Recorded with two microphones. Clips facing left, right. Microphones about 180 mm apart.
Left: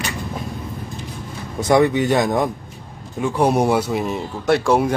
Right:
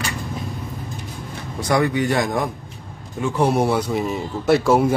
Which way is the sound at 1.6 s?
20° left (ahead or behind).